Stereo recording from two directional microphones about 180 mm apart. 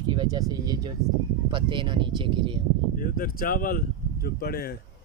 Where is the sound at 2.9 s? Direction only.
50° left (ahead or behind).